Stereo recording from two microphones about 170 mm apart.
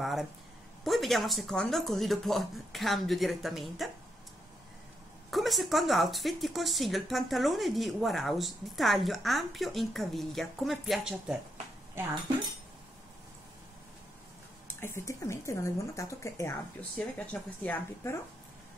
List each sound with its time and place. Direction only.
0.0 s speech: centre (ahead or behind)
5.3 s speech: centre (ahead or behind)
12.0 s speech: 15° right (ahead or behind)
14.8 s speech: 15° left (ahead or behind)